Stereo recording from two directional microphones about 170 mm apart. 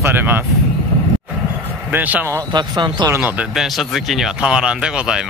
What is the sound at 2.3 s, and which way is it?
Speech, 25° right (ahead or behind).